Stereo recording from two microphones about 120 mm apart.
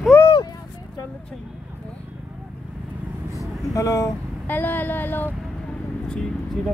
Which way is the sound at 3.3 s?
30° left (ahead or behind).